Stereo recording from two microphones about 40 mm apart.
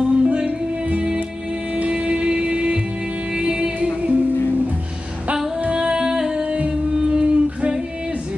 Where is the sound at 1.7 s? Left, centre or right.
Right.